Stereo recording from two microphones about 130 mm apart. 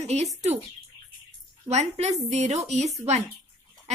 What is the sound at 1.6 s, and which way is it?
A woman's voice, 55° right (ahead or behind).